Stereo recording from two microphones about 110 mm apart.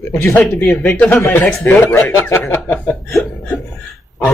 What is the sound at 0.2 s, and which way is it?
Speech, 20° left (ahead or behind).